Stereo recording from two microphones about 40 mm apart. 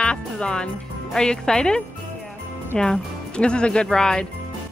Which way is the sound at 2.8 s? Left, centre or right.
Left.